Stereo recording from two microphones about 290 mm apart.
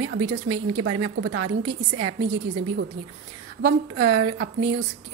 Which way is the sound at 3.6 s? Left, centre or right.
Right.